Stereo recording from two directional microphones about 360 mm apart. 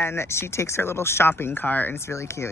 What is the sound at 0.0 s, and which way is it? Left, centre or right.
Speech, centre.